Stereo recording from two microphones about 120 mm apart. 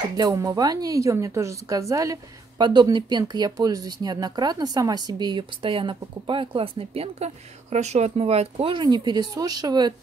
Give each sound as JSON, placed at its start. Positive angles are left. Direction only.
{"t": 0.2, "sound": "speech", "side_deg": -30}
{"t": 2.6, "sound": "speech", "side_deg": -40}
{"t": 8.7, "sound": "speech", "side_deg": -35}